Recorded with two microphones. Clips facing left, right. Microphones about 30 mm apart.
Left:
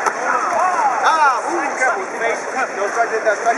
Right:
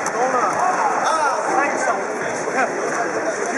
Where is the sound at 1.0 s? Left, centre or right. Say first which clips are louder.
Left 5 dB; left.